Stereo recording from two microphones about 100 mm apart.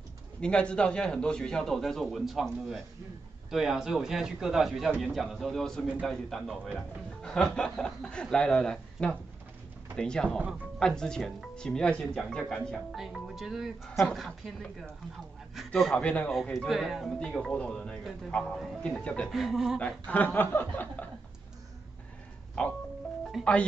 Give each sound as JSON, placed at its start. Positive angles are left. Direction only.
{"t": 0.4, "sound": "speech", "side_deg": 10}
{"t": 17.2, "sound": "speech", "side_deg": 10}
{"t": 19.3, "sound": "speech", "side_deg": -5}
{"t": 19.8, "sound": "speech", "side_deg": 15}
{"t": 22.6, "sound": "speech", "side_deg": 10}
{"t": 23.4, "sound": "speech", "side_deg": -5}